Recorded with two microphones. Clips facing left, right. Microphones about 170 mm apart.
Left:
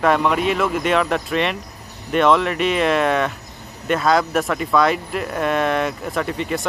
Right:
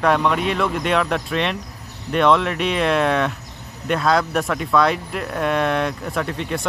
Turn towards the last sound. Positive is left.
turn(degrees=0)  # may be behind; listen again after turning